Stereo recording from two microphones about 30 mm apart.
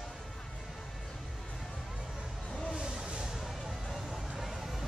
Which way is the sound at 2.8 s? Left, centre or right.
Right.